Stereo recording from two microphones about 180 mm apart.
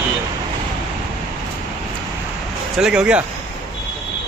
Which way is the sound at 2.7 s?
5° right (ahead or behind).